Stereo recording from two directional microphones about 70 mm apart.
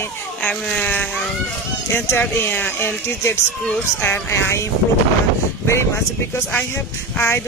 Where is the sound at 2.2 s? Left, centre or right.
Left.